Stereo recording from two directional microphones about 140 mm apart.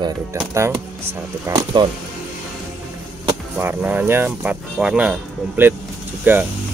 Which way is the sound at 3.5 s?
10° right (ahead or behind).